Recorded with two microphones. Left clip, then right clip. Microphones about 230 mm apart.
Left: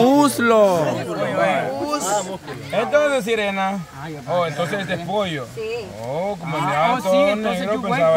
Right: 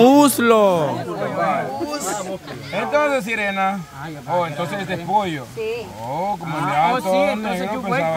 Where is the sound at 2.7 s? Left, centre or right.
Centre.